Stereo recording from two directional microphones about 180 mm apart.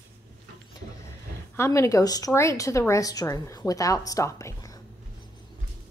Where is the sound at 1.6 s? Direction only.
15° left (ahead or behind).